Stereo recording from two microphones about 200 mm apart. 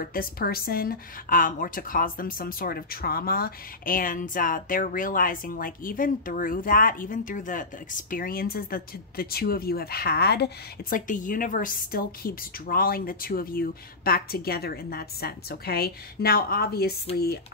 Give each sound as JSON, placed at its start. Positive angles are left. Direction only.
{"t": 0.0, "sound": "a woman's voice", "side_deg": 45}